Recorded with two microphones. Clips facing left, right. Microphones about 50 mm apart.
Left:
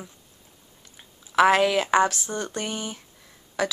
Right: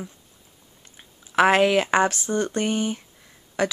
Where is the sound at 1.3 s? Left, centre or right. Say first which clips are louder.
Right 1 dB; right.